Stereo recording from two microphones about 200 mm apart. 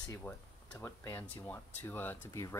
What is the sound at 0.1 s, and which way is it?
Speech, 10° left (ahead or behind).